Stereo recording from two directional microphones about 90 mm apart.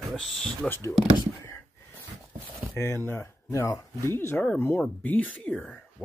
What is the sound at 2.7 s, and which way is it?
Speech, 25° left (ahead or behind).